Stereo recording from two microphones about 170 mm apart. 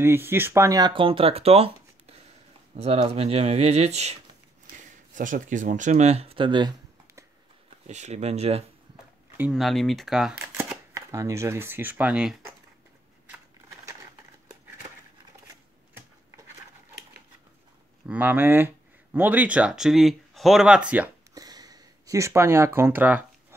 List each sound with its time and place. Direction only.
0.0 s speech: 15° right (ahead or behind); by 6.7 s 30° right (ahead or behind)
7.8 s speech: 40° right (ahead or behind)
9.4 s speech: centre (ahead or behind)
10.6 s speech: 15° right (ahead or behind)
18.0 s speech: 10° right (ahead or behind)
21.4 s a sound: 20° right (ahead or behind)